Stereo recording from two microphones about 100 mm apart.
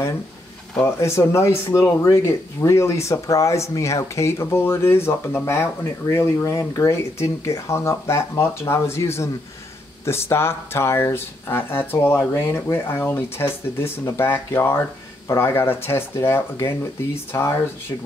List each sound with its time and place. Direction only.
0.9 s speech: 30° left (ahead or behind)